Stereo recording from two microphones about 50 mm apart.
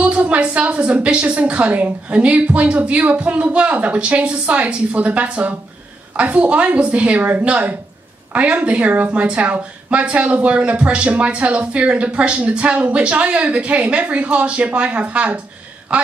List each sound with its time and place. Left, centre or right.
0.0 s speech: right